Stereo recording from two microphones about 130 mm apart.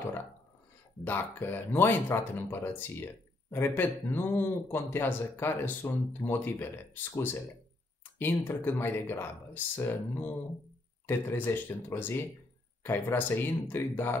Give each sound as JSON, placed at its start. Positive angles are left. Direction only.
{"t": 1.0, "sound": "speech", "side_deg": 15}